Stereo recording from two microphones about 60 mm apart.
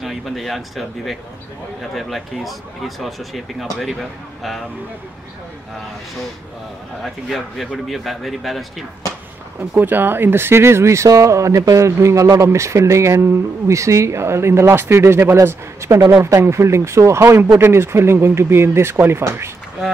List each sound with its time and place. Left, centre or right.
0.0 s speech: centre
7.0 s speech: centre
9.6 s speech: right